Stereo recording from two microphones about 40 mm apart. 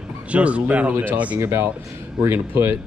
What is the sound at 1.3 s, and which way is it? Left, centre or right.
Speech, right.